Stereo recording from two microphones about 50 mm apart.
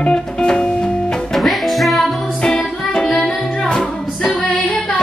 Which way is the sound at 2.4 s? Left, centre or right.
Centre.